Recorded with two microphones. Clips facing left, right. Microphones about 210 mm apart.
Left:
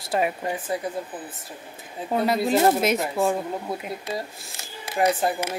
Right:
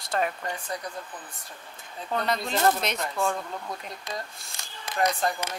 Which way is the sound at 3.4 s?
25° left (ahead or behind).